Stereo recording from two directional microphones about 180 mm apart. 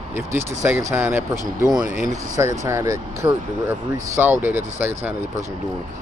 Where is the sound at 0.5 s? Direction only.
15° right (ahead or behind).